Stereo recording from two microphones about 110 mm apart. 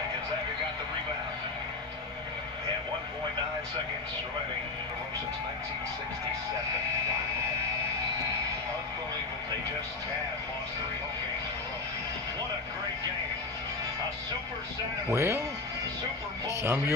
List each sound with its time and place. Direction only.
15.1 s speech: 25° right (ahead or behind)
16.4 s speech: 25° right (ahead or behind)